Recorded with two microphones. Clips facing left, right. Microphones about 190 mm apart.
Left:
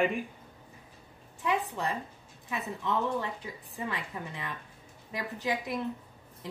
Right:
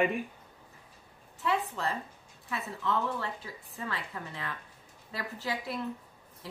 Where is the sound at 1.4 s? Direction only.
15° left (ahead or behind).